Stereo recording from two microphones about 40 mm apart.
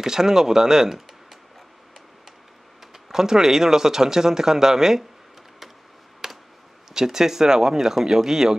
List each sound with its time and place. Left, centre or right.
0.0 s speech: centre
2.9 s speech: centre
6.2 s a sound: centre
6.9 s speech: centre